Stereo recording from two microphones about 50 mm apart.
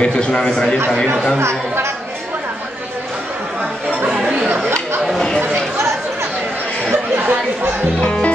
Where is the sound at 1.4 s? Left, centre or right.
Right.